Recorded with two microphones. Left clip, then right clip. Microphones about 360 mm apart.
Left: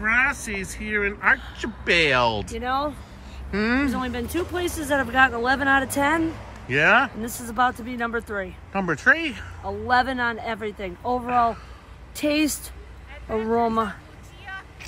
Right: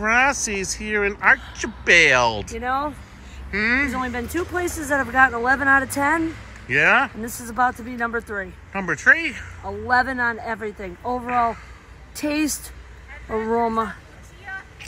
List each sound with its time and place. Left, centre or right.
0.0 s speech: centre
14.5 s vehicle: left